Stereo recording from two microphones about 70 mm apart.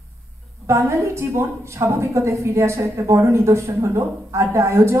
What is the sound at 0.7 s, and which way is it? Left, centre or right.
A woman's voice, right.